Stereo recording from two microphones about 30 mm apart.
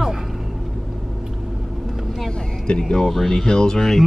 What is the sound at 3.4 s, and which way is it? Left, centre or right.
Speech, left.